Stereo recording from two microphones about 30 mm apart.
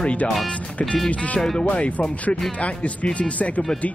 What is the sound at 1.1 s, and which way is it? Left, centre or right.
Speech, left.